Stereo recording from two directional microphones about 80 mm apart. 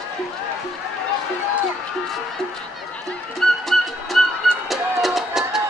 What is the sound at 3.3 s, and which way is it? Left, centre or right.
Music, centre.